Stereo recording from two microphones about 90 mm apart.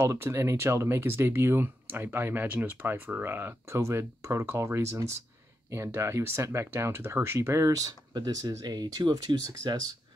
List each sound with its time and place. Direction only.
0.0 s speech: 30° right (ahead or behind)